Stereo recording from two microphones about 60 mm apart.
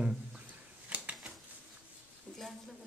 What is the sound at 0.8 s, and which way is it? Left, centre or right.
Typewriter, right.